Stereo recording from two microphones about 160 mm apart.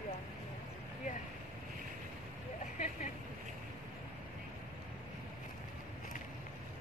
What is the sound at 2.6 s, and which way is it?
Vehicle, 50° left (ahead or behind).